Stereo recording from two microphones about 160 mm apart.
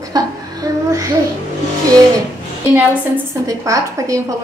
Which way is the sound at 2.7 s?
15° right (ahead or behind).